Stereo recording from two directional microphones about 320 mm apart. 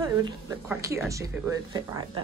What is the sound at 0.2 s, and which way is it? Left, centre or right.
Speech, centre.